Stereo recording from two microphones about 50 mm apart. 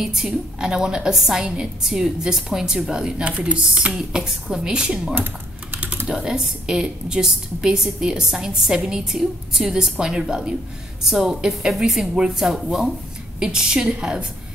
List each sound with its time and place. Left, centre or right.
0.0 s a woman's voice: centre
5.1 s typing: right
6.0 s a woman's voice: centre